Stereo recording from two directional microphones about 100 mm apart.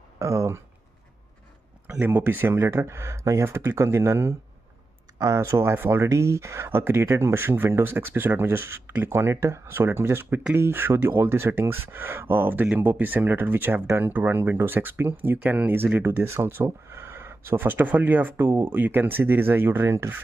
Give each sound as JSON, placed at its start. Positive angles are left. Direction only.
{"t": 0.2, "sound": "speech", "side_deg": -30}
{"t": 1.9, "sound": "speech", "side_deg": -20}